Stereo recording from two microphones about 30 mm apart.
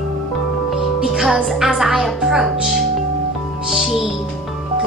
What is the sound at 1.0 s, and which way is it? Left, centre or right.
Music, right.